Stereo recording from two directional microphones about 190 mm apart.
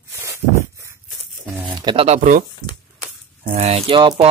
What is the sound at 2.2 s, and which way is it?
Speech, 45° right (ahead or behind).